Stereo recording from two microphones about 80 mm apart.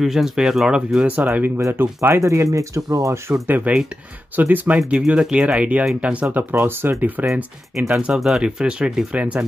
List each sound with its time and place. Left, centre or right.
0.0 s speech: centre; by 1.5 s right
1.6 s speech: right
3.4 s speech: right
6.5 s speech: right
7.7 s speech: centre